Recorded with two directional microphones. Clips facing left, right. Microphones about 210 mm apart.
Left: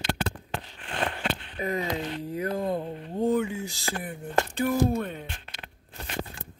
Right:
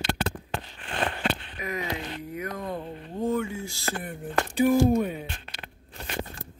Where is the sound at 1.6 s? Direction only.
30° left (ahead or behind); by 3.9 s 15° left (ahead or behind).